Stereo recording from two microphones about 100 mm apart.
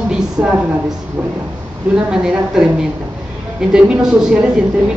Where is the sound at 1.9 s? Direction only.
10° right (ahead or behind).